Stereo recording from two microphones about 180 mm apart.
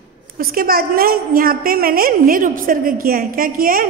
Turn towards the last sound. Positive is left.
turn(degrees=-55)  # may be behind; listen again after turning